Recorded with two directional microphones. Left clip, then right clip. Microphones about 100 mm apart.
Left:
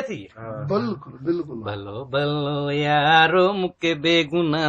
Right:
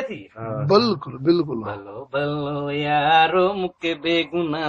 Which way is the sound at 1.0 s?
20° right (ahead or behind).